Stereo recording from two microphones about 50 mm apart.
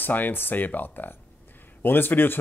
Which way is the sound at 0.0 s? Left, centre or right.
Left.